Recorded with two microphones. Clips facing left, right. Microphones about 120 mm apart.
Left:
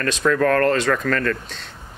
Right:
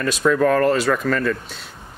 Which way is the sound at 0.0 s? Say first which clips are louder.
Right 1 dB; 10° right (ahead or behind).